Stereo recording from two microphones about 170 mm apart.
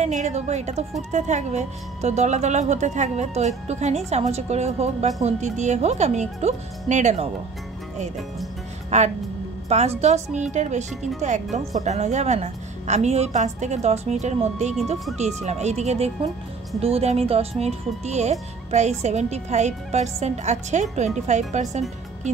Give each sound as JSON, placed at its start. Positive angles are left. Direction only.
{"t": 0.0, "sound": "a woman's voice", "side_deg": -45}
{"t": 8.9, "sound": "a woman's voice", "side_deg": -40}